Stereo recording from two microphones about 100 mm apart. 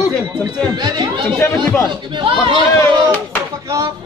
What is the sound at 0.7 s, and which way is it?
Chatter, 50° right (ahead or behind).